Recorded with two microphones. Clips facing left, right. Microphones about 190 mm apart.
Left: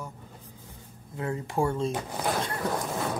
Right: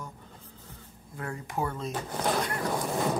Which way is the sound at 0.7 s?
20° left (ahead or behind).